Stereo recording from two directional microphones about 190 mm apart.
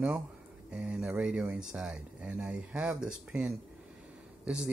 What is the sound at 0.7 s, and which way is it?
Speech, 5° right (ahead or behind).